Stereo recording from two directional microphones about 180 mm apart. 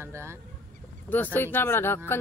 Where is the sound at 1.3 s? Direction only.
10° left (ahead or behind).